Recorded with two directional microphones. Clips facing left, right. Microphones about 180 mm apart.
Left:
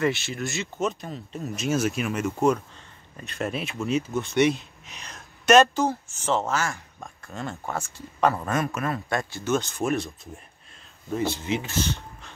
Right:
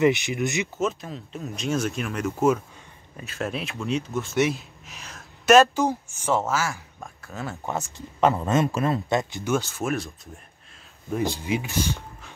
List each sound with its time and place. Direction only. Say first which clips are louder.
0.0 s speech: right 5 dB; 15° right (ahead or behind)
0.7 s speech: right 1 dB; centre (ahead or behind)
5.8 s a woman's voice: right 1 dB; 10° right (ahead or behind)
7.6 s speech: right 2 dB; 20° right (ahead or behind); by 10.3 s centre (ahead or behind)
11.1 s speech: right 1 dB; 10° right (ahead or behind)